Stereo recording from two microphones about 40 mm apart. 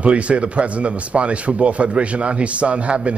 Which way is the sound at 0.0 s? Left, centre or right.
Right.